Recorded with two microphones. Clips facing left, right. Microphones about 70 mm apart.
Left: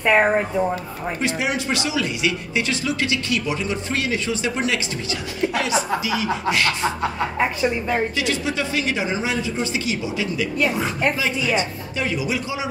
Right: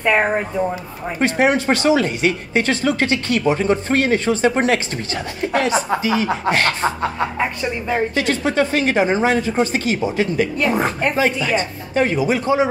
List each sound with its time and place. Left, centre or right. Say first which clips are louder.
0.0 s speech: even; centre
1.2 s speech: right 8 dB; right
7.3 s speech: left 1 dB; centre
8.2 s speech: right 5 dB; right